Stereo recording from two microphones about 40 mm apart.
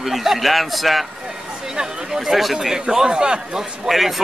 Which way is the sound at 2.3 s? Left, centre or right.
Centre.